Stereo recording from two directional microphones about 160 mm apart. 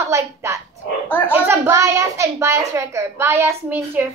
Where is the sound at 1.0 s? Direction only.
10° left (ahead or behind).